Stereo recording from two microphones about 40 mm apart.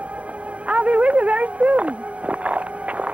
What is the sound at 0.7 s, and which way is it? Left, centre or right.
Speech, right.